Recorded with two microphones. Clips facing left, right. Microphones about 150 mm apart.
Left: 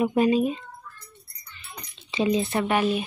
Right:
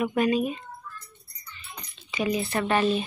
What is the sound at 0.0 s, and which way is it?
Speech, 30° left (ahead or behind).